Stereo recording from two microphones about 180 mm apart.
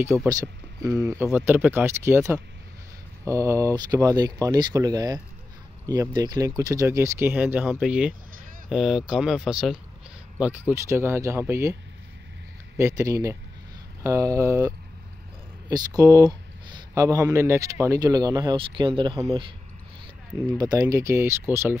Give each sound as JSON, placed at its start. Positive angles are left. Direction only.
{"t": 0.0, "sound": "speech", "side_deg": -15}
{"t": 12.7, "sound": "speech", "side_deg": -15}
{"t": 15.7, "sound": "speech", "side_deg": -20}
{"t": 20.5, "sound": "speech", "side_deg": -20}